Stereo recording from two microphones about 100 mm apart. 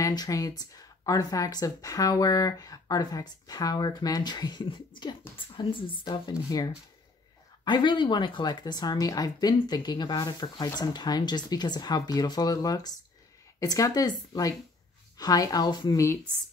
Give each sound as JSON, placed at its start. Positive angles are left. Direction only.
{"t": 0.0, "sound": "speech", "side_deg": 40}